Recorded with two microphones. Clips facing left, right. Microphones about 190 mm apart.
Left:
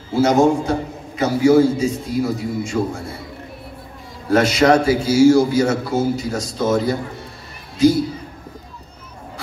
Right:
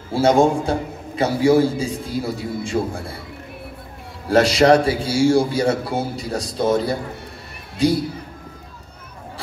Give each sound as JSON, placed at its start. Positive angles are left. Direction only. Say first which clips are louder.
{"t": 0.1, "sound": "a man's voice", "louder": "left 1 dB", "side_deg": -30}
{"t": 4.3, "sound": "a man's voice", "louder": "even", "side_deg": -30}